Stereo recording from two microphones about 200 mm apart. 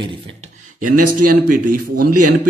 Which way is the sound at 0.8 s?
45° right (ahead or behind).